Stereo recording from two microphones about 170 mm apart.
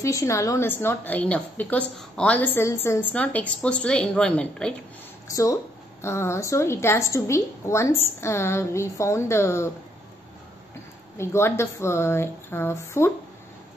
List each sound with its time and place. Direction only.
0.0 s a woman's voice: 20° left (ahead or behind)
5.3 s a woman's voice: 20° left (ahead or behind)
11.1 s a woman's voice: 15° left (ahead or behind)